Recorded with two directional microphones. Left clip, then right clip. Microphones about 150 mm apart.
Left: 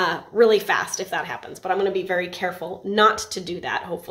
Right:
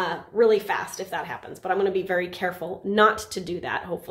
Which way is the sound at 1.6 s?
5° right (ahead or behind).